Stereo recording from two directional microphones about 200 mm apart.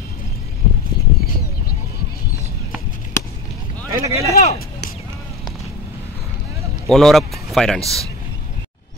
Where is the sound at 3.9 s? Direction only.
15° right (ahead or behind).